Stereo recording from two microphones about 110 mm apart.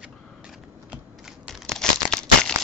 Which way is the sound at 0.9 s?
5° right (ahead or behind).